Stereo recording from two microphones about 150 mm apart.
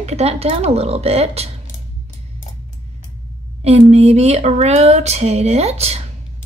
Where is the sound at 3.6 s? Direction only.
45° right (ahead or behind).